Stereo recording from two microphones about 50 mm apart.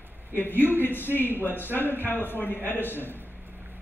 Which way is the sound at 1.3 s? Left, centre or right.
Right.